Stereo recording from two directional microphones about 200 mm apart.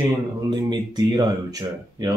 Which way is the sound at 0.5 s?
20° right (ahead or behind).